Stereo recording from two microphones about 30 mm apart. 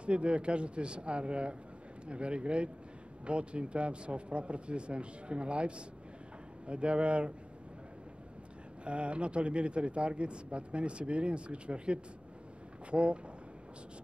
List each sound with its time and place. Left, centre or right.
0.0 s speech: right
8.8 s speech: right